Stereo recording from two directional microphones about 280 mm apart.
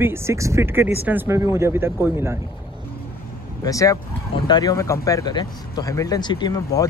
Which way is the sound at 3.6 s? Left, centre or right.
Centre.